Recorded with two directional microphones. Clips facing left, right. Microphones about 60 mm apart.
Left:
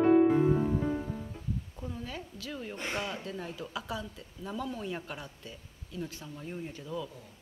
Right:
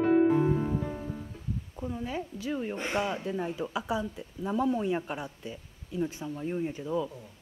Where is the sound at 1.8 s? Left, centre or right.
Centre.